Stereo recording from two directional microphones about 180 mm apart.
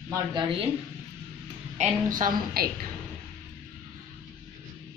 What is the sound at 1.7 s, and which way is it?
Speech, 50° right (ahead or behind).